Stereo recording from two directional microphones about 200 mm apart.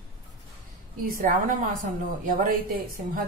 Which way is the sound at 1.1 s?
45° right (ahead or behind).